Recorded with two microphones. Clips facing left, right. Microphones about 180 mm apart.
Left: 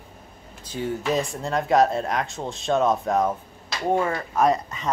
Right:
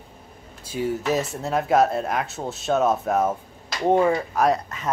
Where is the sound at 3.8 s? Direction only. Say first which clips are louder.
Right 4 dB; 20° right (ahead or behind).